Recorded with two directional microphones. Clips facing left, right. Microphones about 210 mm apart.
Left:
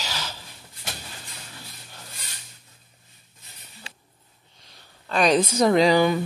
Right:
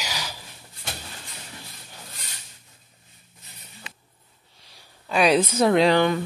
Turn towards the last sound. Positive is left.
turn(degrees=5)  # may be behind; listen again after turning